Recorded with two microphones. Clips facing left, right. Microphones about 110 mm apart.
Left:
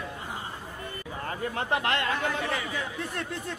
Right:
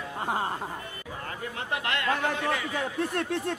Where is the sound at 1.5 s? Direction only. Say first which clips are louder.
Left 3 dB; 35° left (ahead or behind).